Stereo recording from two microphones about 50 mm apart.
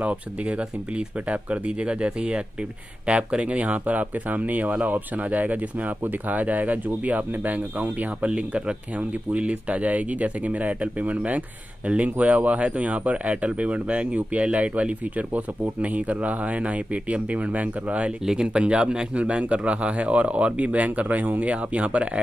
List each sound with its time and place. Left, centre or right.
0.0 s speech: right
8.3 s speech: right
18.2 s speech: centre